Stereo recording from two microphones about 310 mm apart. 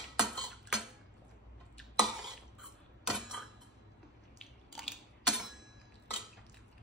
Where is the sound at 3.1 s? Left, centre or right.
Centre.